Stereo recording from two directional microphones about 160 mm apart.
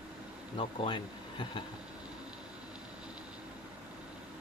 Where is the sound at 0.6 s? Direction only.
30° left (ahead or behind).